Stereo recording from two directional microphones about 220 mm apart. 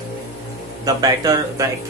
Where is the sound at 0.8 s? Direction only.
15° right (ahead or behind).